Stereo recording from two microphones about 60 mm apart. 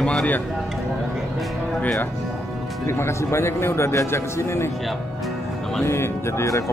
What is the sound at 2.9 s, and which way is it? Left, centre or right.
Speech, left.